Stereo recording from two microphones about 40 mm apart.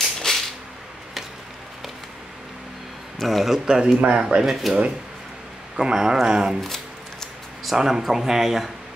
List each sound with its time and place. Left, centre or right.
0.0 s a sound: centre
3.2 s a man's voice: centre
3.5 s speech: centre
5.8 s speech: centre
6.6 s shuffling cards: centre
7.7 s speech: centre